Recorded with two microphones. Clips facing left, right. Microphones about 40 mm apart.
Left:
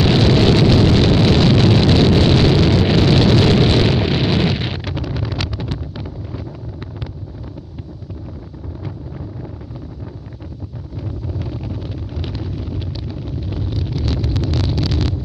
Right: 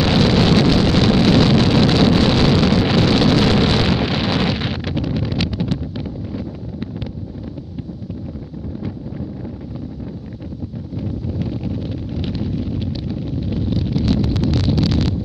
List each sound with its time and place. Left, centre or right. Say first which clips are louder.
0.0 s explosion: left 1 dB; centre
5.1 s wind noise: right 3 dB; centre
5.7 s a sound: right 4 dB; centre
11.0 s wind noise: right 3 dB; centre
12.3 s wind noise: right 5 dB; centre
14.8 s a sound: right 3 dB; centre